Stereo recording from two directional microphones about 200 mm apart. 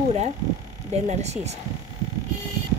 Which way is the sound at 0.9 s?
35° right (ahead or behind).